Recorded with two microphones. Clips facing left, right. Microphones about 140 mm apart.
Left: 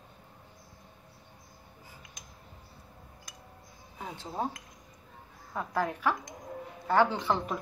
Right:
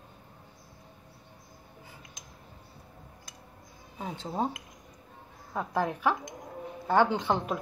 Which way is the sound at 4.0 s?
20° right (ahead or behind).